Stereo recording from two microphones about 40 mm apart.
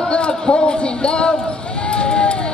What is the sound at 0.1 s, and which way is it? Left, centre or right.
A man's voice, left.